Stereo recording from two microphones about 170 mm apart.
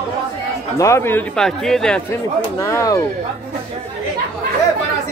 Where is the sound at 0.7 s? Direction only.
15° left (ahead or behind).